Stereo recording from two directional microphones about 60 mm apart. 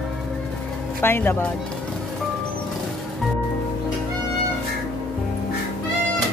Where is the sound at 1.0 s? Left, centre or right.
Left.